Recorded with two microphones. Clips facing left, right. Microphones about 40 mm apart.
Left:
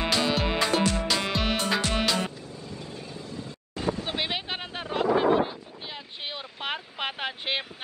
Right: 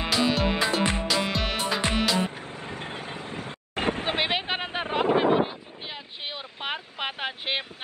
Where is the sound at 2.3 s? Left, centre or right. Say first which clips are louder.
Right 4 dB; right.